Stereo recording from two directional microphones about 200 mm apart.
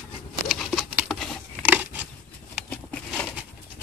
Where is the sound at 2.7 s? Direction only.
5° left (ahead or behind).